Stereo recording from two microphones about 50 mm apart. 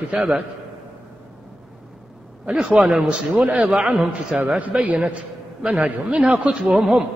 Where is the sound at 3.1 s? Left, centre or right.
Right.